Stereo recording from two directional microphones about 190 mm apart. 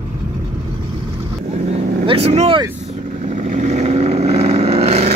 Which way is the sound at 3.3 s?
40° right (ahead or behind).